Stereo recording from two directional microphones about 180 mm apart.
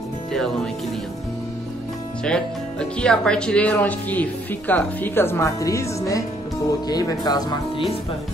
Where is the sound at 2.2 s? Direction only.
5° left (ahead or behind); by 7.8 s 20° left (ahead or behind).